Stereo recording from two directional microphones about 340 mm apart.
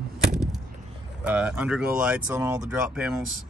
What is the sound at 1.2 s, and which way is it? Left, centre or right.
Speech, centre.